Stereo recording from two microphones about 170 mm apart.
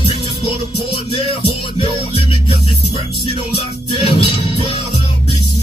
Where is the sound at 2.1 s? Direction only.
35° left (ahead or behind).